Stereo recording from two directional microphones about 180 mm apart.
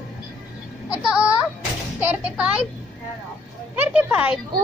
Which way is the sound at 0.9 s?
5° right (ahead or behind).